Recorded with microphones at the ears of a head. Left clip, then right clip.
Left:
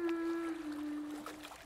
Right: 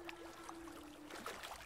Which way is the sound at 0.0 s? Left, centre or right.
Left.